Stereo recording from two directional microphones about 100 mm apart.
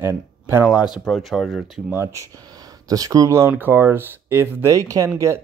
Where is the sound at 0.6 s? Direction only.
5° right (ahead or behind).